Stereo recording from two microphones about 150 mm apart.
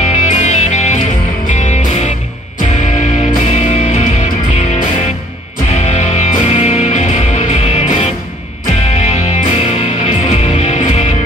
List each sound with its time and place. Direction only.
0.0 s music: 50° left (ahead or behind)
5.7 s music: 45° left (ahead or behind)